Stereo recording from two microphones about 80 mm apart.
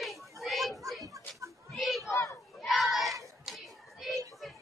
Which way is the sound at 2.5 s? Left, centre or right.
Centre.